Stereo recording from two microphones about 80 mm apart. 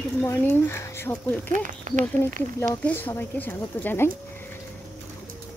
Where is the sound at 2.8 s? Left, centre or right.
Left.